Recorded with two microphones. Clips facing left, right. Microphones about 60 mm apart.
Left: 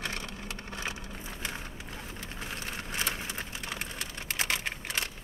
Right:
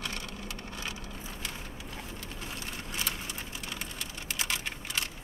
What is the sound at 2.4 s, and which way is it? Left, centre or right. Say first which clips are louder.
Typing: left 3 dB; left.